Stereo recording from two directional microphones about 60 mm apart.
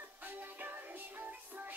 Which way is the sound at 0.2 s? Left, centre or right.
Right.